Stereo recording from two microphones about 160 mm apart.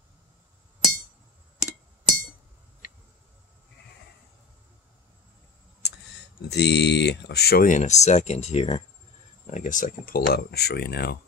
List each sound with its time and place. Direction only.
6.5 s speech: 90° left
7.6 s speech: 50° left (ahead or behind)
9.5 s speech: 50° left (ahead or behind); by 11.1 s 90° left